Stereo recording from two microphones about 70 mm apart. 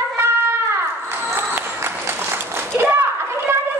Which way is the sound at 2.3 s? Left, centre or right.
Right.